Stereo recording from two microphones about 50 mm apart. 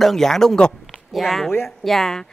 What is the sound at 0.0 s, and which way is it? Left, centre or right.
Speech, centre.